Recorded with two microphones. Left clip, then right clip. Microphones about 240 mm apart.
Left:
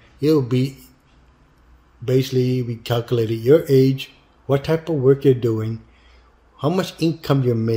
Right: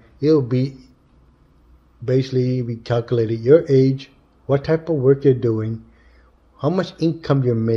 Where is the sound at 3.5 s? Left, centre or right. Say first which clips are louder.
Right 1 dB; centre.